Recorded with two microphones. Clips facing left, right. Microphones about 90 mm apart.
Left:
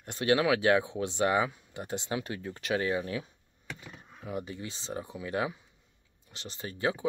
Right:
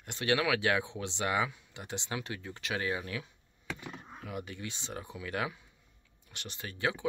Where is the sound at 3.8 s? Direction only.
30° right (ahead or behind).